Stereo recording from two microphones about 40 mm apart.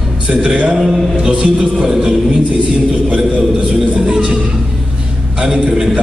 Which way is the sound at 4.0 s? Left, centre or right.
Centre.